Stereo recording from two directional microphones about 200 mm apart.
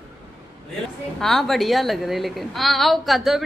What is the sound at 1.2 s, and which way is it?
A woman's voice, centre (ahead or behind).